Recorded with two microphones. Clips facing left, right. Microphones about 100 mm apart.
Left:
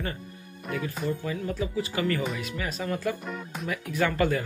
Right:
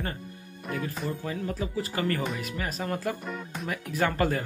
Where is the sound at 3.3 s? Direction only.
Centre (ahead or behind).